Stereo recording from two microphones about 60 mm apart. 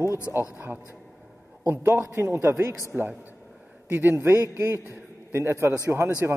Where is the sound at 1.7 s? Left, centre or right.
Right.